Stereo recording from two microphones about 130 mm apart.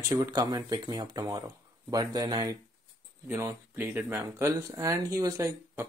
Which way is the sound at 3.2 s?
15° right (ahead or behind).